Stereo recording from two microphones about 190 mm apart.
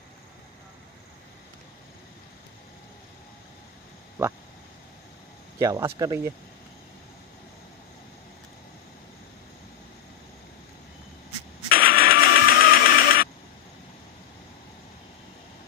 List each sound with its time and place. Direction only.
4.2 s a sound: 15° right (ahead or behind)
5.6 s speech: 15° right (ahead or behind)
11.7 s printer: 50° left (ahead or behind)